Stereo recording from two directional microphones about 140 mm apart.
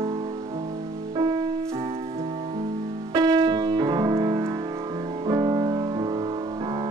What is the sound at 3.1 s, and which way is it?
Music, 30° right (ahead or behind).